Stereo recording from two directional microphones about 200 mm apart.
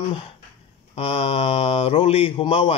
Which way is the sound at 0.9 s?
30° left (ahead or behind).